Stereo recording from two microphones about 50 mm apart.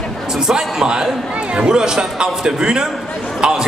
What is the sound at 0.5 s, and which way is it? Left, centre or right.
Speech, centre.